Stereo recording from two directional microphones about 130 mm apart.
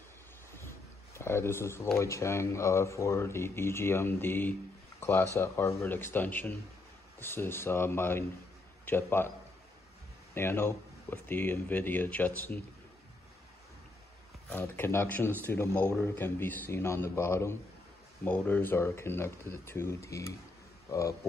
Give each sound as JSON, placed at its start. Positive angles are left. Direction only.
{"t": 0.6, "sound": "a sound", "side_deg": 20}
{"t": 2.0, "sound": "speech", "side_deg": 20}
{"t": 10.3, "sound": "speech", "side_deg": 15}
{"t": 14.5, "sound": "speech", "side_deg": 20}